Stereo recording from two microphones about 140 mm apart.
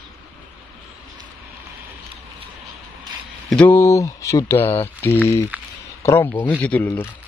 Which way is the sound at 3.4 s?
5° left (ahead or behind).